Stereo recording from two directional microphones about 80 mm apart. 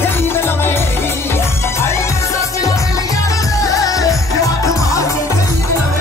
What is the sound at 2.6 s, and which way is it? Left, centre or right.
Music, left.